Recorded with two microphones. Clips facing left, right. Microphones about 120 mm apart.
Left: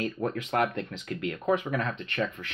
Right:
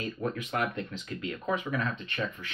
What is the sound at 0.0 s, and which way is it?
Speech, 65° left (ahead or behind).